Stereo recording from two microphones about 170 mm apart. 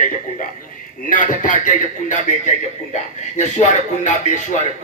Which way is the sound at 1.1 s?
50° left (ahead or behind).